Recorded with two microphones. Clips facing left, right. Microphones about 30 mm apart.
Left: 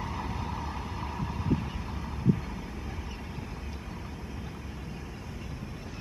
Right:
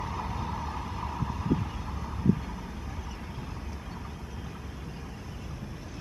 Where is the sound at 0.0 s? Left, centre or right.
Centre.